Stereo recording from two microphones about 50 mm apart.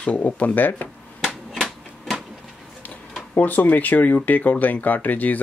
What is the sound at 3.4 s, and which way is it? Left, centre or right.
Speech, left.